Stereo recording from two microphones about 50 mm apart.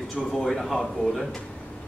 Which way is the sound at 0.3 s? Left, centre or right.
Centre.